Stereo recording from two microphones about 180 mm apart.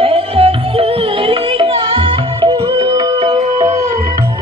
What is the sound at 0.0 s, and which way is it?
Music, 30° right (ahead or behind).